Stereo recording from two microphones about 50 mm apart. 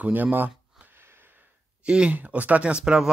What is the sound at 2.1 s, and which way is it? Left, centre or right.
Speech, right.